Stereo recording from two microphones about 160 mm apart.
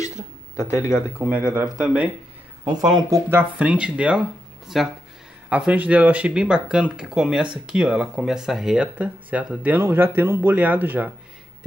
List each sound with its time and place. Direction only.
1.1 s speech: 10° right (ahead or behind)
2.7 s speech: 25° right (ahead or behind)
3.3 s speech: 10° right (ahead or behind)